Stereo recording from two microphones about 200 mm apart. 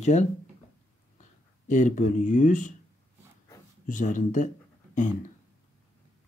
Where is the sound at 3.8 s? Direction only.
40° left (ahead or behind).